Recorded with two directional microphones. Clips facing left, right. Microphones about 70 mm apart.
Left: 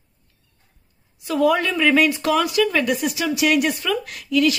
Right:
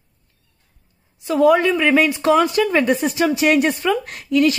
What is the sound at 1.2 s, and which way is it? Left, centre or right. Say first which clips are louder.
Speech: right 4 dB; right.